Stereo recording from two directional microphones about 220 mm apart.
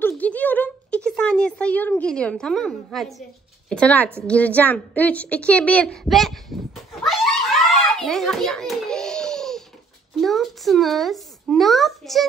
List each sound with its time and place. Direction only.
0.0 s a sound: 5° left (ahead or behind)
4.3 s speech: 5° left (ahead or behind)
7.0 s hands: centre (ahead or behind)
10.1 s speech: centre (ahead or behind)